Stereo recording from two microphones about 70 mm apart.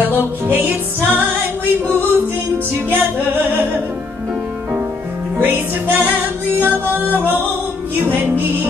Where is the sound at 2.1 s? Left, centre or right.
Right.